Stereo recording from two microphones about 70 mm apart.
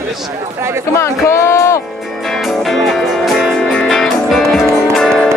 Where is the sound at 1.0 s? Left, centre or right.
Left.